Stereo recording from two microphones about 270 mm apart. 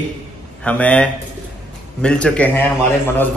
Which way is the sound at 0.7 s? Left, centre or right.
Centre.